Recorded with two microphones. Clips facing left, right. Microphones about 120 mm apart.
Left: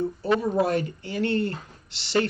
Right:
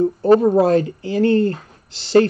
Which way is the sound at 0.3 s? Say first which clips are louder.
Right 10 dB; 45° right (ahead or behind).